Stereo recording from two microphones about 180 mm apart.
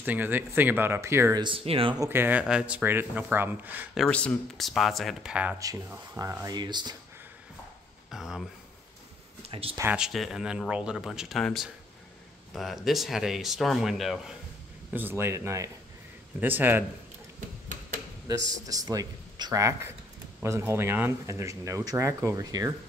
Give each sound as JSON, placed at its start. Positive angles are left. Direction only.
{"t": 0.0, "sound": "speech", "side_deg": -10}
{"t": 1.4, "sound": "speech", "side_deg": -30}
{"t": 2.0, "sound": "speech", "side_deg": -10}
{"t": 4.0, "sound": "speech", "side_deg": 5}
{"t": 5.6, "sound": "speech", "side_deg": -20}
{"t": 8.1, "sound": "speech", "side_deg": 0}
{"t": 9.4, "sound": "speech", "side_deg": -30}
{"t": 9.8, "sound": "speech", "side_deg": -5}
{"t": 14.9, "sound": "speech", "side_deg": -10}
{"t": 18.2, "sound": "speech", "side_deg": -20}